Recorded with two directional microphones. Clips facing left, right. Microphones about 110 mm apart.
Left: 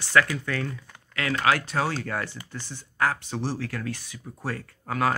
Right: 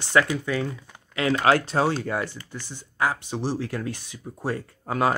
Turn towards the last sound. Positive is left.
turn(degrees=-25)  # may be behind; listen again after turning